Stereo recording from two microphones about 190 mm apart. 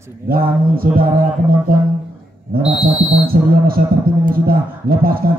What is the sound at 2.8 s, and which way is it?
A man's voice, 50° right (ahead or behind).